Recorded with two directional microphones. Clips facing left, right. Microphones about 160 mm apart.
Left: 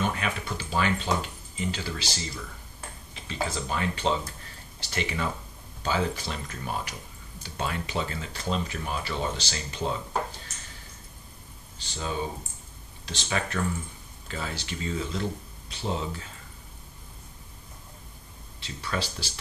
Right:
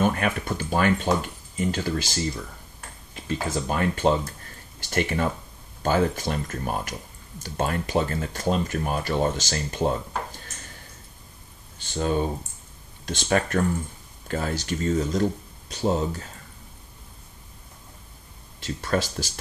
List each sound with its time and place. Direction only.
0.0 s speech: 50° right (ahead or behind)
3.3 s speech: 50° right (ahead or behind)
11.8 s speech: 50° right (ahead or behind)
18.6 s speech: 45° right (ahead or behind)